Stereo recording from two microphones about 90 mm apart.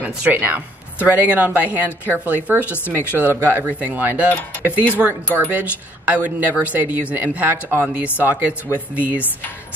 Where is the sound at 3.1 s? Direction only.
20° right (ahead or behind).